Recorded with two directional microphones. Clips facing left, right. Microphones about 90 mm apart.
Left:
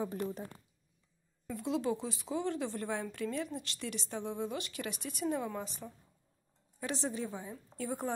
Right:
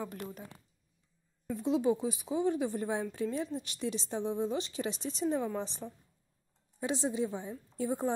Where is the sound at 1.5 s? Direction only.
20° right (ahead or behind).